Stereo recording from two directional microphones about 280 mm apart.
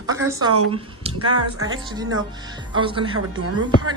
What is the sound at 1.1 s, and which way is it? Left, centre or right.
Speech, right.